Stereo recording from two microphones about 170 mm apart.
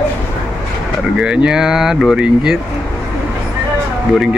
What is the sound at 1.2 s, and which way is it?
Speech, 5° right (ahead or behind).